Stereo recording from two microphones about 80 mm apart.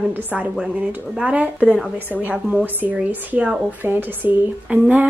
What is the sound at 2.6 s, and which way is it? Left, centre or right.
Speech, right.